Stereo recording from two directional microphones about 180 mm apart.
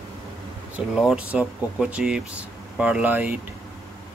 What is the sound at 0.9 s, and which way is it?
Speech, 5° right (ahead or behind).